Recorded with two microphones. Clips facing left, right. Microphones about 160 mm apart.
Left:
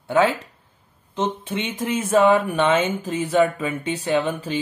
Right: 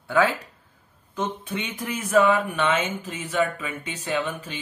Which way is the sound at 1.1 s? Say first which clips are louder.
Left 4 dB; 25° left (ahead or behind).